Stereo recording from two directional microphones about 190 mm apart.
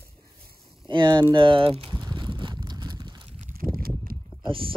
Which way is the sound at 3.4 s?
45° right (ahead or behind).